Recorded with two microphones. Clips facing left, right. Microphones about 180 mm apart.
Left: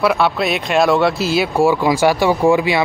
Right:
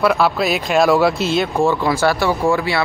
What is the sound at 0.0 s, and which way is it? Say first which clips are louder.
Speech: even; centre (ahead or behind).